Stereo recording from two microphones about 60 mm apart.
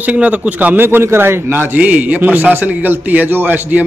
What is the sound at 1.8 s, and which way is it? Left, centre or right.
A man's voice, right.